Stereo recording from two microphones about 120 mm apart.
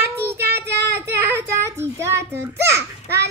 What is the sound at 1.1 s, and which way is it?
A child's voice, 20° right (ahead or behind).